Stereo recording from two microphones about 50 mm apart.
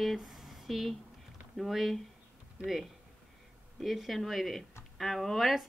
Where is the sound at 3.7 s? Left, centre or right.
Centre.